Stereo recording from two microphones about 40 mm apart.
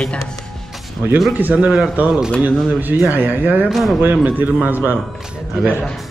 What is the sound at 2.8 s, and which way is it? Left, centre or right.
Speech, right.